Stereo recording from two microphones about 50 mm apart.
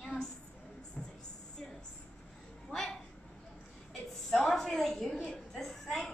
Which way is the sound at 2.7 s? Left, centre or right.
Centre.